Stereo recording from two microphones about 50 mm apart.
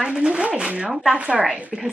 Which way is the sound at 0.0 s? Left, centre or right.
Centre.